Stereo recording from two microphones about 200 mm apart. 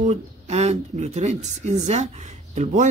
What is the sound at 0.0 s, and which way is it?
Speech, 35° right (ahead or behind).